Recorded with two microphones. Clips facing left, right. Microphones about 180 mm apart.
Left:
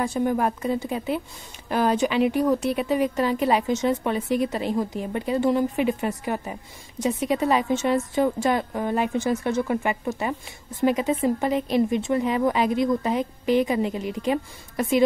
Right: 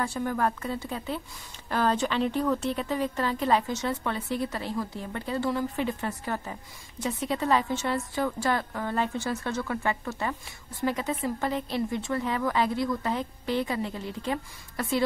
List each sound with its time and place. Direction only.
0.0 s a woman's voice: 20° left (ahead or behind)